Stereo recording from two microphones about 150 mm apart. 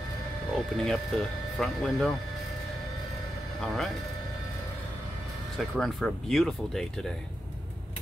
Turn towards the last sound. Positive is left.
turn(degrees=5)  # may be behind; listen again after turning